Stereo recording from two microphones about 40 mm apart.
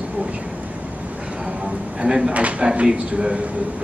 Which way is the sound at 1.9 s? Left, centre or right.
Centre.